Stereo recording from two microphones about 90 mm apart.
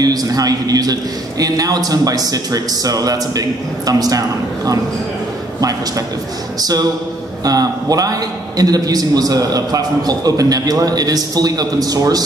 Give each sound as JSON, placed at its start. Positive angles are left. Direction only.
{"t": 0.0, "sound": "a man's voice", "side_deg": -45}
{"t": 5.6, "sound": "a man's voice", "side_deg": -40}